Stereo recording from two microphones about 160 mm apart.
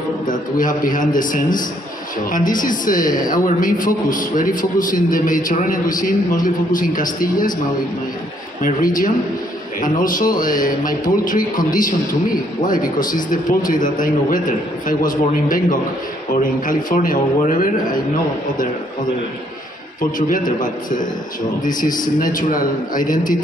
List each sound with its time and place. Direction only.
0.3 s a man's voice: 55° left (ahead or behind)
8.6 s a man's voice: 60° left (ahead or behind)
20.2 s a man's voice: 60° left (ahead or behind)